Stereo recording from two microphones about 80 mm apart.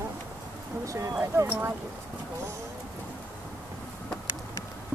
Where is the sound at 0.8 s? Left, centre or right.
Right.